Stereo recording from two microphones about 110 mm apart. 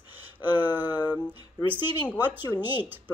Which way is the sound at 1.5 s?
15° right (ahead or behind).